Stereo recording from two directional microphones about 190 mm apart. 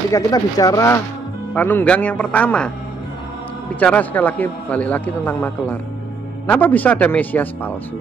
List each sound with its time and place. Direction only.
0.1 s a man's voice: 20° left (ahead or behind)
3.8 s a man's voice: 10° left (ahead or behind)